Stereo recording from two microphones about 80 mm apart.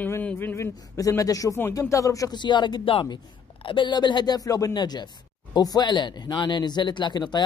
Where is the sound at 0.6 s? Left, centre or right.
Left.